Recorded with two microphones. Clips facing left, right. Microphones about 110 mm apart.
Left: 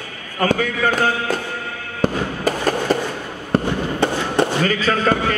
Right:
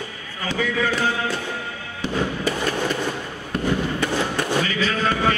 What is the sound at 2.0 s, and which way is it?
Fireworks, 40° left (ahead or behind).